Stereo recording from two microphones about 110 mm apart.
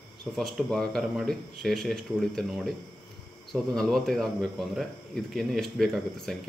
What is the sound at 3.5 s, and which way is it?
Speech, 5° left (ahead or behind).